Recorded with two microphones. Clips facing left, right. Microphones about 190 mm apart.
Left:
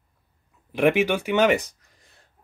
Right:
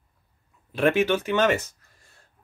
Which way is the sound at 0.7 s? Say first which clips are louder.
Left 1 dB; 15° left (ahead or behind).